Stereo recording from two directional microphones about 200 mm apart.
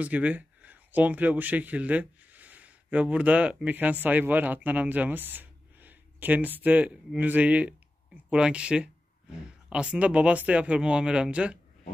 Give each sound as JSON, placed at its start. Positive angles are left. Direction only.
{"t": 0.0, "sound": "speech", "side_deg": -5}